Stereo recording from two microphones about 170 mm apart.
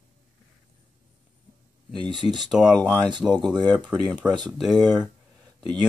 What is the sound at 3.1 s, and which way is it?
Speech, 25° right (ahead or behind).